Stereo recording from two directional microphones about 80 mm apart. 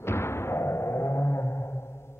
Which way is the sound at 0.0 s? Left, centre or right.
Left.